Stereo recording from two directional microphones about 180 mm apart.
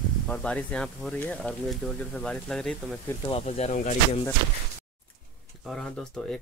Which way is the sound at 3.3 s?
35° left (ahead or behind).